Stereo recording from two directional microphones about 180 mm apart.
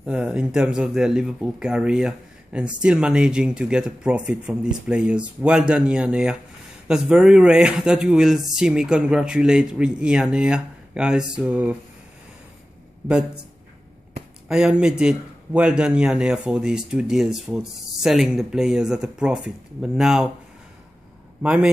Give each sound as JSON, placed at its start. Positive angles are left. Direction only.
{"t": 0.0, "sound": "speech", "side_deg": -5}
{"t": 14.5, "sound": "speech", "side_deg": -5}
{"t": 21.4, "sound": "a man's voice", "side_deg": -5}